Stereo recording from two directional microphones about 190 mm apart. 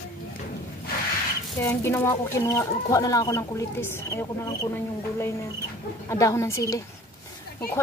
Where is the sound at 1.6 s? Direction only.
15° left (ahead or behind).